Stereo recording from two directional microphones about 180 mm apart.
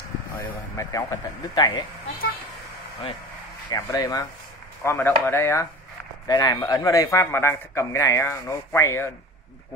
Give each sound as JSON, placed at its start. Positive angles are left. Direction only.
{"t": 0.7, "sound": "speech", "side_deg": 20}
{"t": 3.7, "sound": "speech", "side_deg": 20}